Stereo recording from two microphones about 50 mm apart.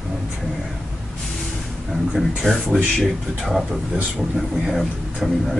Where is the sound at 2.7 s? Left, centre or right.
Right.